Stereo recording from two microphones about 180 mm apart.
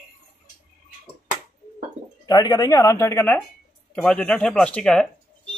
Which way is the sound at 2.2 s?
20° left (ahead or behind).